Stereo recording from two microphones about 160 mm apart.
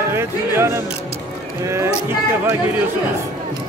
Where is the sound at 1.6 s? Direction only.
15° right (ahead or behind).